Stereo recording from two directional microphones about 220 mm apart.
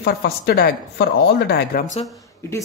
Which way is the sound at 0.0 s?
45° left (ahead or behind).